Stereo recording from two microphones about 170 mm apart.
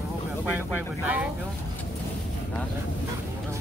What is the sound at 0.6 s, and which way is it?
Speech, 10° right (ahead or behind).